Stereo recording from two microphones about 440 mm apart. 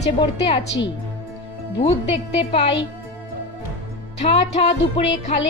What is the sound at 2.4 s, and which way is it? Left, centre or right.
Speech, centre.